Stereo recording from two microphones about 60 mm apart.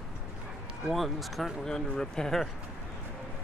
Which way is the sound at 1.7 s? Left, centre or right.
Centre.